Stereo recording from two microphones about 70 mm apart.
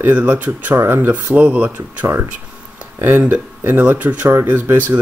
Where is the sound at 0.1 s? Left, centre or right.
Right.